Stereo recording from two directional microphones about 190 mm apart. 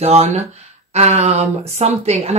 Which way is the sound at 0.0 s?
35° right (ahead or behind).